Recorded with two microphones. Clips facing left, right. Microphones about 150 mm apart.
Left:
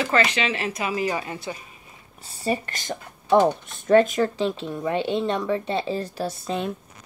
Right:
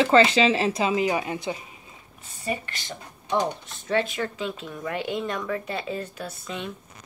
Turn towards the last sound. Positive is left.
turn(degrees=35)  # may be behind; listen again after turning